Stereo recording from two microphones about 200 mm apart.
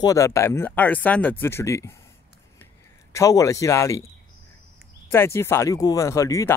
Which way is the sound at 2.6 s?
15° left (ahead or behind).